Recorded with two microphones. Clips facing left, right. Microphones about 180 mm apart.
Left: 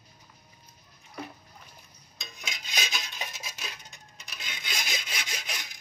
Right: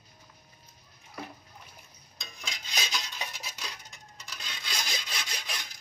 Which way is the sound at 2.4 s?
20° left (ahead or behind).